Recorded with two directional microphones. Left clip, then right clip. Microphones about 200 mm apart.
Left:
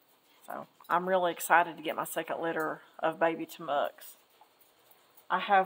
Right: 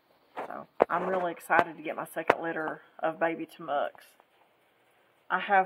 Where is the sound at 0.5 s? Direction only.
5° left (ahead or behind).